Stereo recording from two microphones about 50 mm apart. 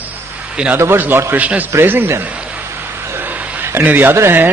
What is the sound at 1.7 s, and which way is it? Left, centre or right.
Speech, right.